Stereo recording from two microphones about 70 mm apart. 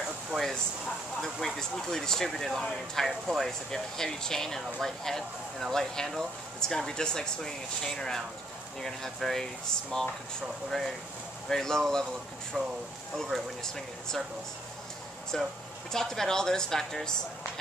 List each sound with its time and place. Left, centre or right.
0.3 s a sound: centre
1.2 s speech: centre
11.4 s speech: centre
12.6 s speech: centre
13.1 s speech: centre
15.3 s speech: centre